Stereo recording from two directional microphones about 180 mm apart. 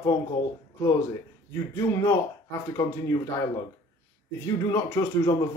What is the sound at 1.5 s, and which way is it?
Speech, 15° left (ahead or behind).